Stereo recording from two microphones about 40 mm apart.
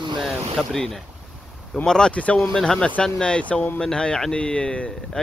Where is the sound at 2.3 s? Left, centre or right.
Centre.